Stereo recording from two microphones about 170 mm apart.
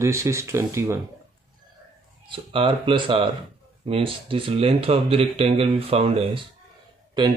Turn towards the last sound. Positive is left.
turn(degrees=-25)  # may be behind; listen again after turning